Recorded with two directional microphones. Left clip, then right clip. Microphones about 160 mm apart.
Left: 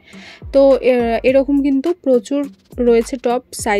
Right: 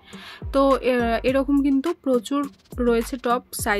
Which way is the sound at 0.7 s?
20° left (ahead or behind).